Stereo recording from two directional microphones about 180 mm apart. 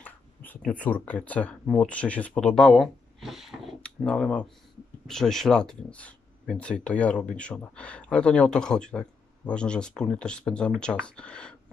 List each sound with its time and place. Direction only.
0.0 s speech: 10° left (ahead or behind)